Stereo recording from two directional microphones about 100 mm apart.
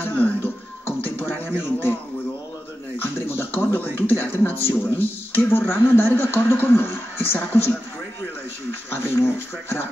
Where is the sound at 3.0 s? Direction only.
25° left (ahead or behind).